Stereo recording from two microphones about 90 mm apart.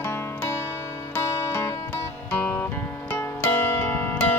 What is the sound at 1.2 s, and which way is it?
Music, 30° left (ahead or behind).